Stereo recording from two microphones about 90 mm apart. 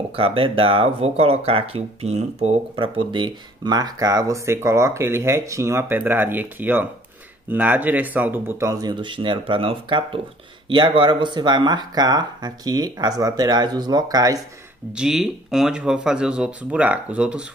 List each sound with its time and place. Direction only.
0.1 s speech: 90° right; by 3.7 s 60° right (ahead or behind)
3.7 s speech: 45° right (ahead or behind); by 8.6 s 25° right (ahead or behind)
8.6 s speech: 55° right (ahead or behind); by 10.0 s 75° right (ahead or behind)
10.7 s speech: 60° right (ahead or behind); by 14.4 s 45° right (ahead or behind)
14.9 s speech: 10° right (ahead or behind)